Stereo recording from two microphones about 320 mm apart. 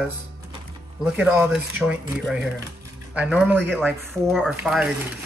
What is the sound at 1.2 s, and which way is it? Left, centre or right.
Speech, centre.